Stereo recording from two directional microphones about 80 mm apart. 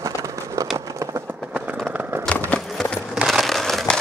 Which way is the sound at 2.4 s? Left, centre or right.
Centre.